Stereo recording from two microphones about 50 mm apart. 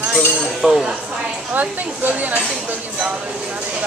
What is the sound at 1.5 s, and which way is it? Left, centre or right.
Speech, right.